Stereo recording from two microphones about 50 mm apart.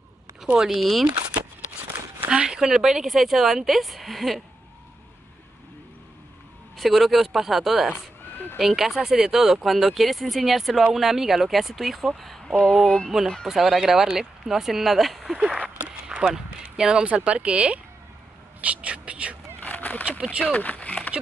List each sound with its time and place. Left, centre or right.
0.4 s speech: centre
0.7 s speech: centre
2.2 s speech: centre
6.8 s speech: centre
12.8 s speech: centre
13.5 s speech: centre
16.3 s speech: centre
17.1 s speech: right
19.6 s a sound: left
20.1 s speech: right
20.5 s speech: left